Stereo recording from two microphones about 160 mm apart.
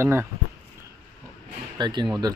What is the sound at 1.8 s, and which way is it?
Speech, 30° right (ahead or behind).